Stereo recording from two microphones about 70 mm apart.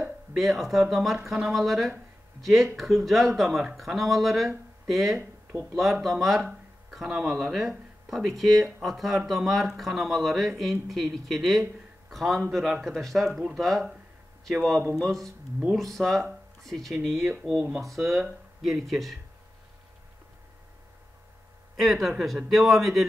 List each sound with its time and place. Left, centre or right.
0.3 s speech: centre
17.3 s speech: centre
17.7 s speech: centre
21.7 s speech: centre